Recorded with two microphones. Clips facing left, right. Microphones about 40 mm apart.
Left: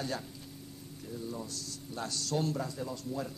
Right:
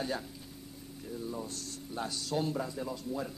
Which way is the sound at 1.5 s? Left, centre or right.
Right.